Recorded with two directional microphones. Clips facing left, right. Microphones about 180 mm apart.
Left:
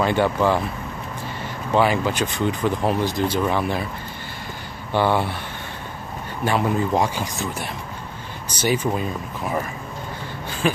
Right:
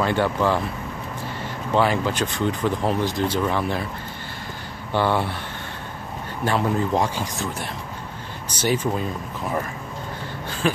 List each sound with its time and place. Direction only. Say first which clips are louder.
0.0 s speech: left 2 dB; 15° left (ahead or behind)
1.8 s speech: left 1 dB; 15° left (ahead or behind)
4.9 s speech: left 2 dB; 15° left (ahead or behind)
6.4 s speech: left 1 dB; 10° left (ahead or behind)
8.5 s speech: left 1 dB; 15° left (ahead or behind)
10.6 s speech: left 1 dB; 15° left (ahead or behind)